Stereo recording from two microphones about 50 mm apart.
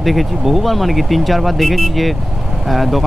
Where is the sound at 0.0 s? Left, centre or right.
Centre.